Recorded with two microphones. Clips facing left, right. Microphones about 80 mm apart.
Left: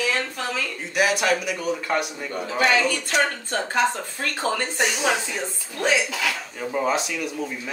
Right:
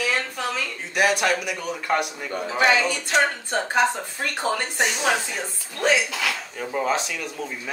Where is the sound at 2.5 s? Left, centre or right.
Centre.